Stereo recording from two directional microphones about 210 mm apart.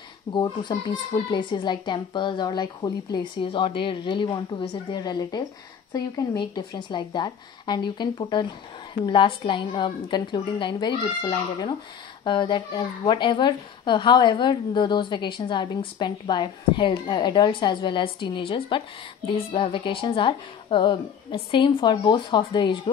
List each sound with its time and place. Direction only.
0.3 s a child's voice: 20° left (ahead or behind)